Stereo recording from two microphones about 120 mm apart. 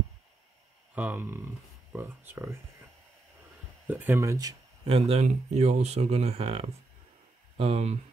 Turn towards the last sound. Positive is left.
turn(degrees=-60)  # may be behind; listen again after turning